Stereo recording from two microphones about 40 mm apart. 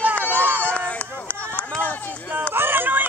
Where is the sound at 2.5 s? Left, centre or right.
Right.